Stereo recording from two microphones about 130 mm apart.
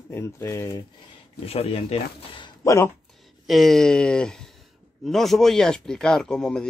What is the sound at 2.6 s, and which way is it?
Speech, 25° left (ahead or behind).